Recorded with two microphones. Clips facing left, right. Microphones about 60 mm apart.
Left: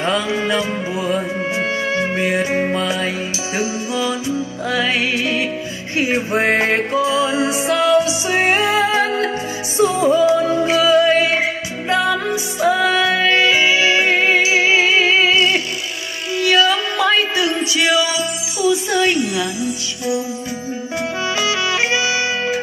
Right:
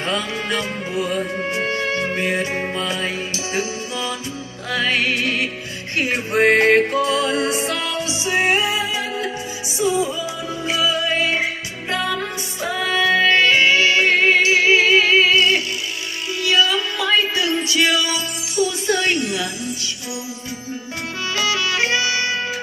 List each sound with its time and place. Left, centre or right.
0.3 s music: centre
7.7 s music: left
10.6 s music: left
12.6 s music: centre
13.0 s music: left
13.3 s music: centre
21.4 s music: left